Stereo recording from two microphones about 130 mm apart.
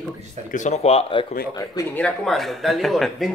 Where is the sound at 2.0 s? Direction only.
5° left (ahead or behind).